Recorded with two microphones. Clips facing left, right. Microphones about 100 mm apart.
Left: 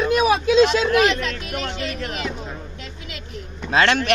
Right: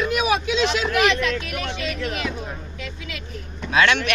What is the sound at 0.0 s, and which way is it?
Vehicle, 35° left (ahead or behind).